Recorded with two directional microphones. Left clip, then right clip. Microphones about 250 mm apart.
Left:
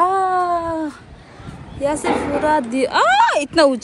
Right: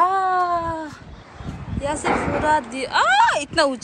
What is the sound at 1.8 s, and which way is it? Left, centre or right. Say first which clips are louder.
A woman's voice: left 3 dB; centre.